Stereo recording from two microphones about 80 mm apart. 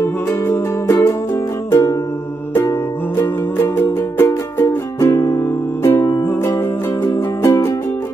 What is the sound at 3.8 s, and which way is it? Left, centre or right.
Music, left.